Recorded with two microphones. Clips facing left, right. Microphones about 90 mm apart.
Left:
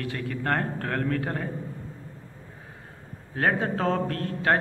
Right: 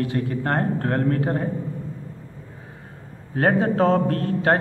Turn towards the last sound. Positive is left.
turn(degrees=-35)  # may be behind; listen again after turning